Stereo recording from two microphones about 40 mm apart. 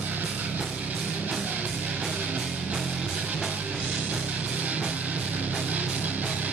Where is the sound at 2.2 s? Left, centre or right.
Right.